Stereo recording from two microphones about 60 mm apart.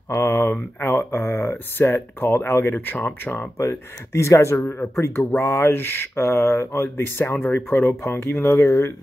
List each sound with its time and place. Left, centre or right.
0.1 s speech: left
3.5 s speech: left
4.6 s speech: left
4.9 s speech: left